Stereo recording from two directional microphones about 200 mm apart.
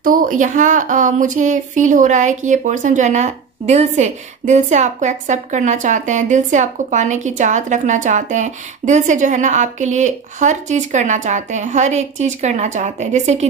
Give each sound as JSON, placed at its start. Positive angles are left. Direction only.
{"t": 0.0, "sound": "a woman's voice", "side_deg": -45}